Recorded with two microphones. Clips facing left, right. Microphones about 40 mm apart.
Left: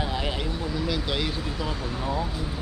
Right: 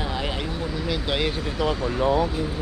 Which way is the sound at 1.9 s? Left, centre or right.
Right.